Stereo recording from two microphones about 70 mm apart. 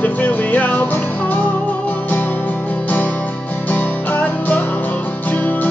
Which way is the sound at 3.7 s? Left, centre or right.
Left.